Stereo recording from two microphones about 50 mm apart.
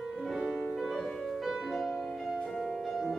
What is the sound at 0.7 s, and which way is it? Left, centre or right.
Music, centre.